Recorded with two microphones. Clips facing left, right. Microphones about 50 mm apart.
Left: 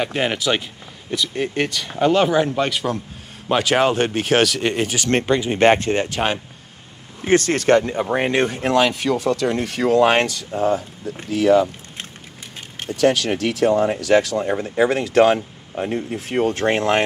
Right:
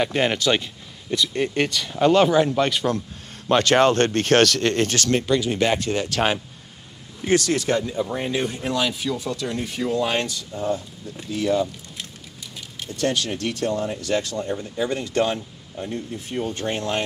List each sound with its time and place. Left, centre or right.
0.0 s speech: centre
5.1 s speech: left
7.2 s speech: left
12.5 s a sound: left
13.0 s speech: left
15.3 s speech: left